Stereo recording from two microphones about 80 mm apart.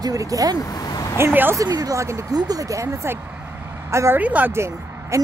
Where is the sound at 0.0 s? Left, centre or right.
Right.